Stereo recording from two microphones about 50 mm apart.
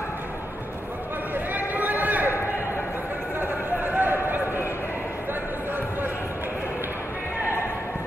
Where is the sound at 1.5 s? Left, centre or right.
Right.